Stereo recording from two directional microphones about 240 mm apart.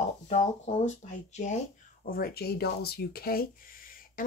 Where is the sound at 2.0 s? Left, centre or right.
Left.